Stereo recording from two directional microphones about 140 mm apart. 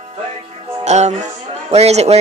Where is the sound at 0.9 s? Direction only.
55° right (ahead or behind).